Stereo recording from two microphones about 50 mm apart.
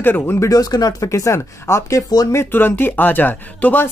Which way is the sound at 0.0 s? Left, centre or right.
Left.